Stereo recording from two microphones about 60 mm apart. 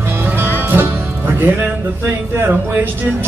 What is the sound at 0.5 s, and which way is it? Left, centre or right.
Music, right.